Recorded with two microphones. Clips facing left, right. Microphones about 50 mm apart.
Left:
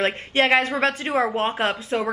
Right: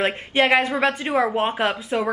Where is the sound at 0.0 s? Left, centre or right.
Centre.